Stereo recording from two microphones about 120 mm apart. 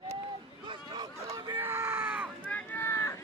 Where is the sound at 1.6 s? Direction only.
20° right (ahead or behind).